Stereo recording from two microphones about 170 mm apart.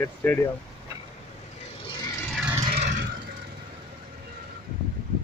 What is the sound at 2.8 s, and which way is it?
Vehicle, 90° right.